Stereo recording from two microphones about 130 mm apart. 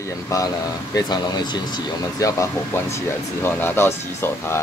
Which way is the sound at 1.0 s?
30° left (ahead or behind).